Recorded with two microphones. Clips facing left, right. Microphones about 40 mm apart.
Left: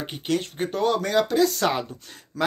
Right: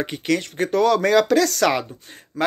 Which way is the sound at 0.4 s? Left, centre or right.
Right.